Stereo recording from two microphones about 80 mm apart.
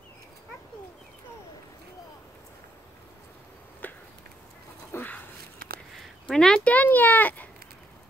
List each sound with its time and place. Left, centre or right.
3.8 s a sound: left
4.9 s dog: left
6.2 s speech: centre